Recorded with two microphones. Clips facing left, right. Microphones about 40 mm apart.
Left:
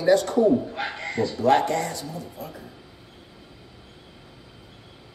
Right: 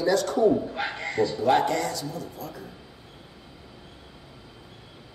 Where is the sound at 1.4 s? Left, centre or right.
Left.